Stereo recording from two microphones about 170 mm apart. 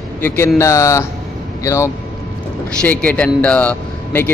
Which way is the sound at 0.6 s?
15° left (ahead or behind).